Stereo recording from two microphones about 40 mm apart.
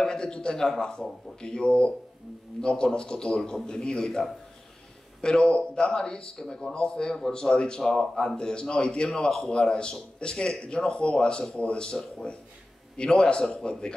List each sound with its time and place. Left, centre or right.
0.0 s a man's voice: centre
3.3 s speech: centre
3.6 s speech: left
5.2 s speech: left
13.4 s speech: centre